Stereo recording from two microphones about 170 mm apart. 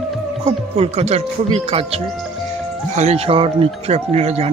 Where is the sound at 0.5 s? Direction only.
35° right (ahead or behind).